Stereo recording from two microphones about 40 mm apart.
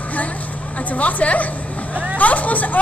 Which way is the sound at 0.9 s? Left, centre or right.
Left.